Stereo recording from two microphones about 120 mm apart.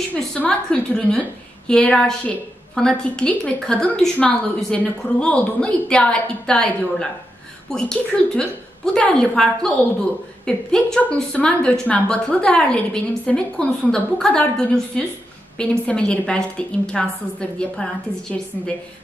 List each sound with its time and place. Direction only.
0.1 s a woman's voice: 10° left (ahead or behind)